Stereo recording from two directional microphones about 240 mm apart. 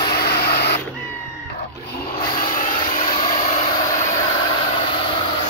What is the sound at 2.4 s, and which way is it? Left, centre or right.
Vehicle, left.